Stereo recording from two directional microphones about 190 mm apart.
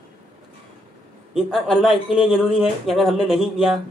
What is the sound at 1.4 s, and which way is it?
Speech, 5° right (ahead or behind).